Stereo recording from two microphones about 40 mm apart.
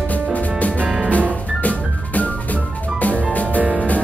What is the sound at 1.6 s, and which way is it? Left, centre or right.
Music, left.